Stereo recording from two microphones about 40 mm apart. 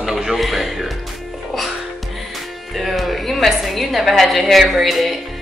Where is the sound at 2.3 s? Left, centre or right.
Centre.